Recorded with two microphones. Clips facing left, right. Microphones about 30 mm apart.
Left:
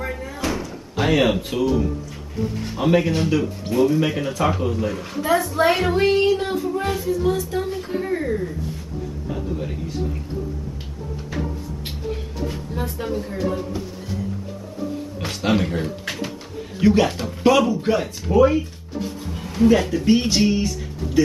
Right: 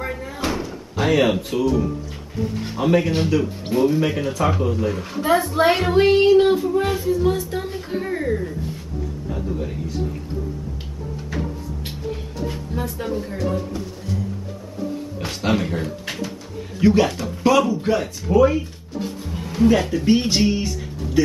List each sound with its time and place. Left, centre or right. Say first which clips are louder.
0.0 s door: right 1 dB; centre
0.9 s speech: even; centre
2.3 s music: right 1 dB; centre
3.7 s child singing: even; centre
4.0 s a man's voice: even; centre
5.2 s a woman's voice: right 1 dB; centre
5.7 s child singing: right 3 dB; centre
9.3 s speech: even; centre
11.2 s a sound: even; centre
13.0 s a man's voice: left 1 dB; centre
15.1 s a man's voice: left 1 dB; centre
17.2 s speech: even; centre
17.5 s speech: even; centre